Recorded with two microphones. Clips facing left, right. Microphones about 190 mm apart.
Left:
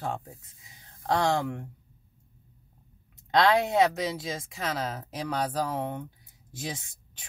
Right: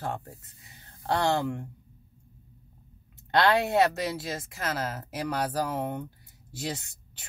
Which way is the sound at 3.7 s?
5° right (ahead or behind).